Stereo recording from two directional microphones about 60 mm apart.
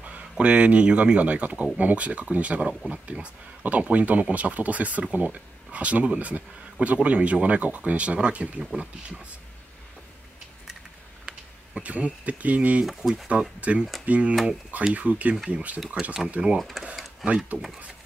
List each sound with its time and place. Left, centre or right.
0.0 s speech: right
11.2 s speech: right
16.5 s speech: centre